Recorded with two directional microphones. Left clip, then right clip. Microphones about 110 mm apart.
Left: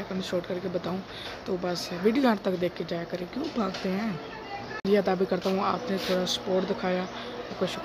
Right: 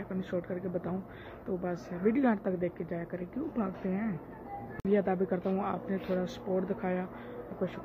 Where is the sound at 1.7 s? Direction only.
20° left (ahead or behind).